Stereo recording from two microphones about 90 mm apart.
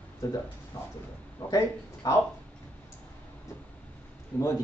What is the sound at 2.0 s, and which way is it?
Speech, 40° left (ahead or behind).